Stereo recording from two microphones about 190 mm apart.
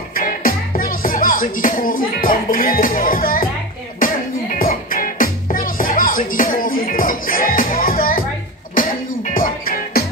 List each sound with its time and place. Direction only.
0.1 s music: 50° left (ahead or behind)